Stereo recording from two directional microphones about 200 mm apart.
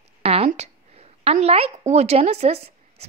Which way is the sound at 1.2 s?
30° right (ahead or behind).